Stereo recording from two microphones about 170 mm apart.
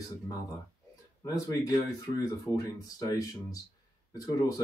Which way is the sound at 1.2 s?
20° left (ahead or behind).